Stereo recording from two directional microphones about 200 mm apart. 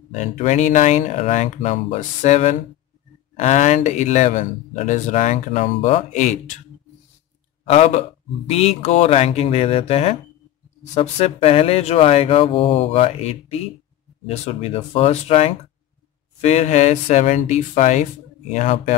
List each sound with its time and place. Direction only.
0.1 s speech: 35° left (ahead or behind)
7.6 s speech: 30° left (ahead or behind)